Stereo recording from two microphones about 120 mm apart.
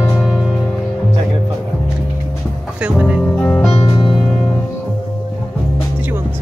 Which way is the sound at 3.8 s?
35° left (ahead or behind).